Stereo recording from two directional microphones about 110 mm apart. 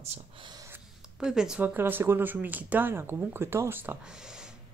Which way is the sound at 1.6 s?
15° right (ahead or behind).